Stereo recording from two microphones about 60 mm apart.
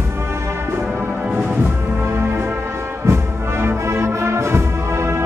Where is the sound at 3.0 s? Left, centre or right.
Right.